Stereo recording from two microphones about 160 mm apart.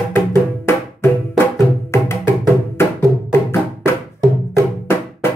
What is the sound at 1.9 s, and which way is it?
Music, 15° left (ahead or behind).